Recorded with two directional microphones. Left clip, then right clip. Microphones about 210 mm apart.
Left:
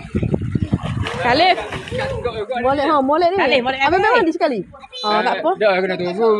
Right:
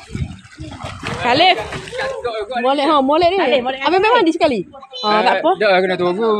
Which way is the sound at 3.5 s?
50° left (ahead or behind).